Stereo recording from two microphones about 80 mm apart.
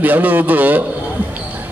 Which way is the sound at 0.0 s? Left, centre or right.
Right.